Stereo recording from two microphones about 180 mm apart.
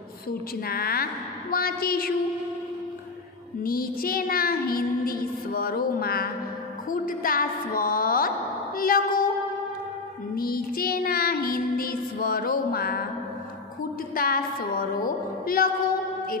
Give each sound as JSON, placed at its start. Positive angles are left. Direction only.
{"t": 0.3, "sound": "music", "side_deg": 55}
{"t": 3.6, "sound": "music", "side_deg": 55}
{"t": 6.9, "sound": "a woman's voice", "side_deg": 50}
{"t": 10.3, "sound": "music", "side_deg": 55}
{"t": 14.1, "sound": "a woman's voice", "side_deg": 55}